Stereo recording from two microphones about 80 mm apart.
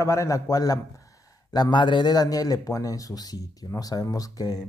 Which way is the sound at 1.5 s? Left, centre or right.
Left.